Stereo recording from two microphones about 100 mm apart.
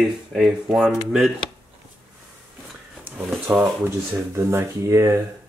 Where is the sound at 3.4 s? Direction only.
15° right (ahead or behind).